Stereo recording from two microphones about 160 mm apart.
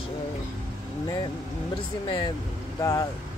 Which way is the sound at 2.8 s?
20° left (ahead or behind).